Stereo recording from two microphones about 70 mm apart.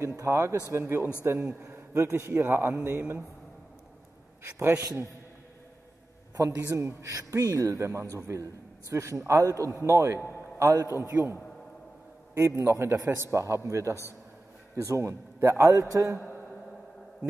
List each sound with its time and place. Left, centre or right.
0.0 s speech: right
1.4 s a man's voice: centre
1.7 s a man's voice: right
2.8 s a man's voice: right
4.4 s a man's voice: right
6.3 s a man's voice: right
7.2 s a man's voice: right
12.4 s a man's voice: right